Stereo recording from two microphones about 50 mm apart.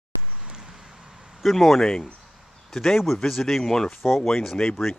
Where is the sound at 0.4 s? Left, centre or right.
Centre.